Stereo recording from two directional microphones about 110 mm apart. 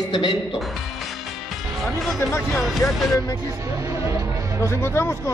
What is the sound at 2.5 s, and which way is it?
Speech, centre (ahead or behind).